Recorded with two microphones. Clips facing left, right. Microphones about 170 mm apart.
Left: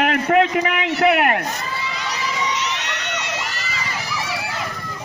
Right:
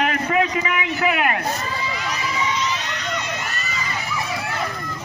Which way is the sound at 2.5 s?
75° left (ahead or behind).